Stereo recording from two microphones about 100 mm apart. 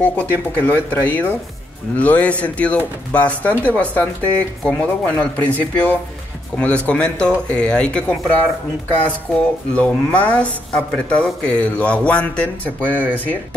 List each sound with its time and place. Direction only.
0.0 s speech: 15° left (ahead or behind)
9.3 s speech: 15° left (ahead or behind)